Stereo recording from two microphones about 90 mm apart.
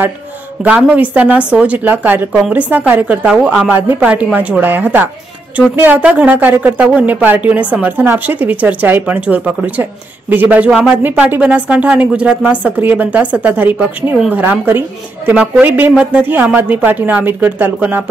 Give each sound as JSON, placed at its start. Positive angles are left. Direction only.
{"t": 0.7, "sound": "a woman's voice", "side_deg": -10}
{"t": 2.3, "sound": "a woman's voice", "side_deg": -10}
{"t": 2.7, "sound": "a woman's voice", "side_deg": -20}